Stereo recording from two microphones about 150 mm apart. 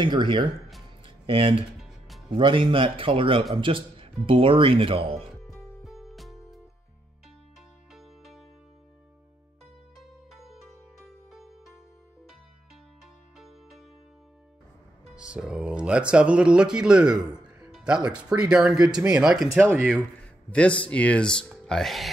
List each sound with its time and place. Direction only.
0.0 s speech: 30° right (ahead or behind)
1.0 s music: 35° right (ahead or behind)
1.8 s music: centre (ahead or behind)
2.2 s speech: 35° right (ahead or behind)
5.1 s music: centre (ahead or behind)
7.9 s music: centre (ahead or behind)
9.9 s music: centre (ahead or behind)
13.0 s music: centre (ahead or behind)
15.1 s speech: 5° right (ahead or behind)
17.3 s music: 5° right (ahead or behind)
18.1 s a man's voice: 5° right (ahead or behind)